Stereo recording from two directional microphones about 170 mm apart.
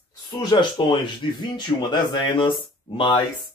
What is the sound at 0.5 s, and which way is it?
Speech, 25° left (ahead or behind).